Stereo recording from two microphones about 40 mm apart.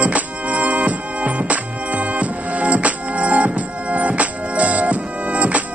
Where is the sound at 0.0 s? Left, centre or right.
Right.